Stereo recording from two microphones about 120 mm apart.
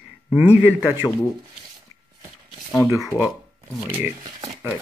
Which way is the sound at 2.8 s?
25° right (ahead or behind).